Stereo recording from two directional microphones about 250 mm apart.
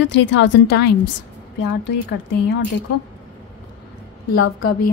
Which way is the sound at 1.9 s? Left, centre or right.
Left.